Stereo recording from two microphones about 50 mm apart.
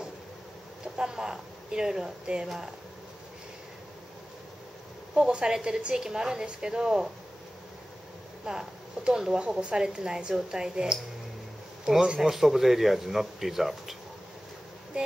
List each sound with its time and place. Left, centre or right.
0.9 s speech: centre
5.1 s a woman's voice: centre
8.5 s a woman's voice: centre